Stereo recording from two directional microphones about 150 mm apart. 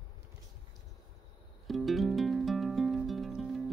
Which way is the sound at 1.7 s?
Centre (ahead or behind).